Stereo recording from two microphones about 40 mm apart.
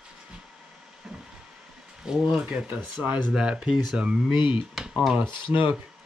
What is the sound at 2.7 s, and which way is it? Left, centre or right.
Speech, right.